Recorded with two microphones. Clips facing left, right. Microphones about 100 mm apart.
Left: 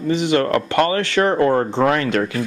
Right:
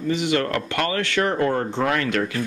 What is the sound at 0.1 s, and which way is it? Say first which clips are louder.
Speech: left 5 dB; 30° left (ahead or behind).